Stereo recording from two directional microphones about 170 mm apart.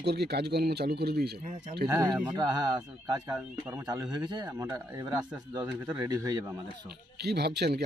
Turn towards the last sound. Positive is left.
turn(degrees=-75)  # may be behind; listen again after turning